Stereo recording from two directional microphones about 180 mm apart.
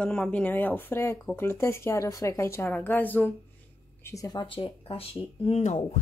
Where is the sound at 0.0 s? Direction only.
5° left (ahead or behind).